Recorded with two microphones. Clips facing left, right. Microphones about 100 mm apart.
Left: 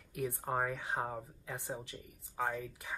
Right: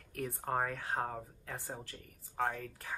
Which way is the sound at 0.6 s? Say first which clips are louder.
Even; 15° left (ahead or behind).